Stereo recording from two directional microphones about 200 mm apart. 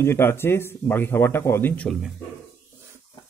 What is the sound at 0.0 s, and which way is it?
Speech, 10° left (ahead or behind).